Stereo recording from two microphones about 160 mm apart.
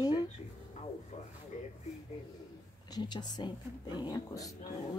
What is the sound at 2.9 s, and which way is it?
Speech, 25° left (ahead or behind).